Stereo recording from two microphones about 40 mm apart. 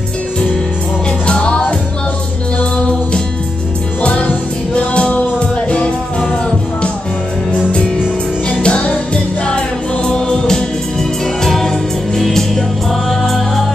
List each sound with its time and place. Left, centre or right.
1.2 s music: left
4.0 s music: left
8.6 s music: left; by 13.7 s centre